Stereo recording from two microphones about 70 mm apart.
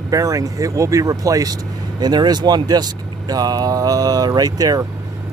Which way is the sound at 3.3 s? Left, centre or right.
Right.